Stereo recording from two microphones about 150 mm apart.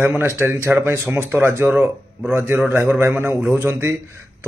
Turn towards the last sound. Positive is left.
turn(degrees=-15)  # may be behind; listen again after turning